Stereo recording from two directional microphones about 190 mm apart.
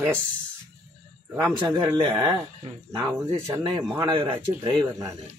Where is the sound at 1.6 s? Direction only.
20° right (ahead or behind).